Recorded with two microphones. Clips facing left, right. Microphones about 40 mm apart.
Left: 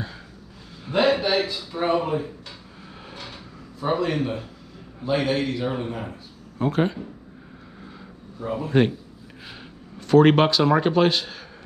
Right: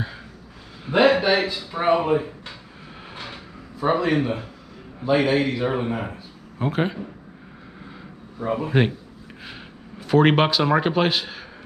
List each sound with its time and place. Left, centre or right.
0.8 s a sound: centre
1.1 s speech: right
3.8 s speech: centre
5.6 s speech: centre
6.6 s speech: centre
8.4 s speech: right
8.6 s speech: centre